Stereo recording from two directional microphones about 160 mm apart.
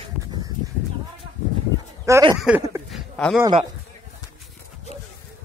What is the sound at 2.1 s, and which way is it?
Speech, 20° right (ahead or behind).